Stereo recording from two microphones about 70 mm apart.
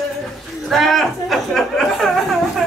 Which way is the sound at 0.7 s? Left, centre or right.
Centre.